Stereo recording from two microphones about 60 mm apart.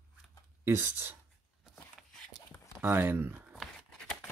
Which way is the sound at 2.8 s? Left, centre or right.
Right.